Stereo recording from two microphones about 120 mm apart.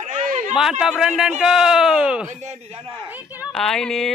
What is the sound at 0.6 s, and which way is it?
A man's voice, 5° right (ahead or behind).